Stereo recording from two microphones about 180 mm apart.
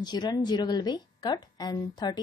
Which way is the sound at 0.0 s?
25° left (ahead or behind).